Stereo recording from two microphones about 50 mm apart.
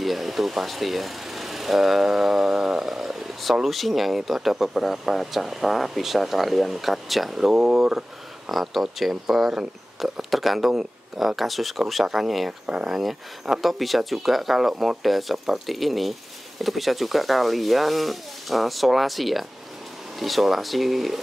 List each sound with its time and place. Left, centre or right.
0.0 s speech: centre
12.6 s speech: centre
13.0 s speech: centre